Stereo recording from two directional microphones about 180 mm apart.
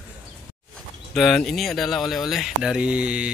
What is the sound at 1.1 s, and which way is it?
Speech, centre (ahead or behind).